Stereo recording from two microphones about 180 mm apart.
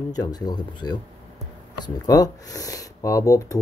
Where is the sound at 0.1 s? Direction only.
20° left (ahead or behind).